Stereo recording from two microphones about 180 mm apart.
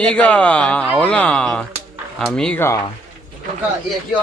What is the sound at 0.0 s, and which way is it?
Speech, 5° left (ahead or behind).